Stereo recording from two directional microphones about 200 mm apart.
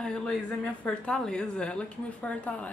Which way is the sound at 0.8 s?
5° left (ahead or behind).